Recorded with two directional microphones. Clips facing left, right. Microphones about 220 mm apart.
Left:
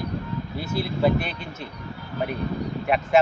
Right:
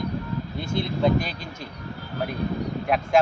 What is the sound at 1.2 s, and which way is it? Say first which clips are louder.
Speech: right 1 dB; 40° right (ahead or behind).